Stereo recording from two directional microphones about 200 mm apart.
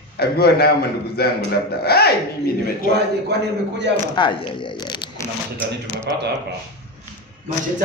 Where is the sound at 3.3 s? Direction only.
55° right (ahead or behind).